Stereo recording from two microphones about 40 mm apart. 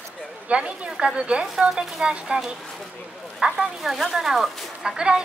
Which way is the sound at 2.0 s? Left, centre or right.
Right.